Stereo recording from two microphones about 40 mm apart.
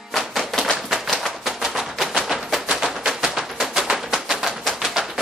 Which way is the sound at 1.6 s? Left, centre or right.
Centre.